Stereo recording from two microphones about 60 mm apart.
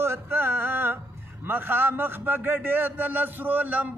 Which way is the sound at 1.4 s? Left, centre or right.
Right.